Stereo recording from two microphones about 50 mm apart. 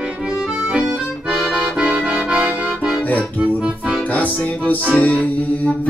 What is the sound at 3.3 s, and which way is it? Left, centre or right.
Music, centre.